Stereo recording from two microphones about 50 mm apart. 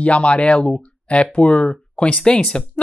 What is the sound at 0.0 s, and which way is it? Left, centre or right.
Speech, left.